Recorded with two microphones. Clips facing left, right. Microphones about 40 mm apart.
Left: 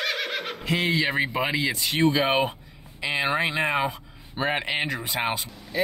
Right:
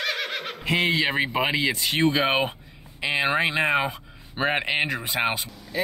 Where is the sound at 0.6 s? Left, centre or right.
Right.